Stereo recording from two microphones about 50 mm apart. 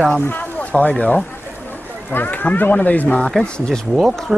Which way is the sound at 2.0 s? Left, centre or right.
Left.